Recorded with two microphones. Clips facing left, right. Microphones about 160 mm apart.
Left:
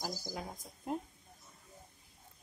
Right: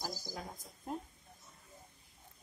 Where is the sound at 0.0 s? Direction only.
15° left (ahead or behind).